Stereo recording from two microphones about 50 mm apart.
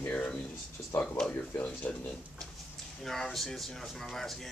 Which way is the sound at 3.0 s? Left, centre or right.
Centre.